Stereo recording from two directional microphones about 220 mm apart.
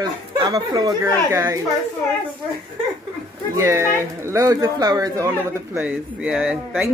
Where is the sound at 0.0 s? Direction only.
15° right (ahead or behind).